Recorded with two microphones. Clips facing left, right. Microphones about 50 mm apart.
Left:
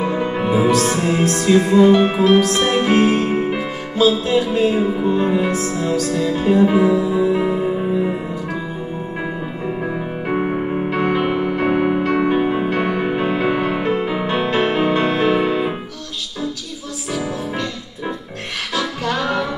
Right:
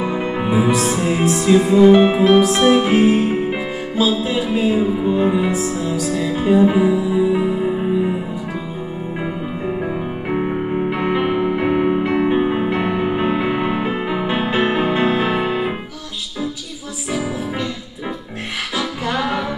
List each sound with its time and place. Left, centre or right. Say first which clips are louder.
0.1 s music: left 1 dB; centre
10.9 s music: left 2 dB; centre
18.8 s music: left 1 dB; centre